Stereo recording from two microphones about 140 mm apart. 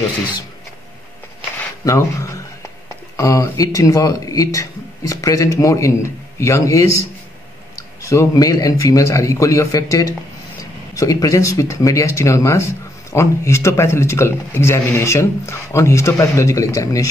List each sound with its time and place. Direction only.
1.9 s speech: 20° left (ahead or behind)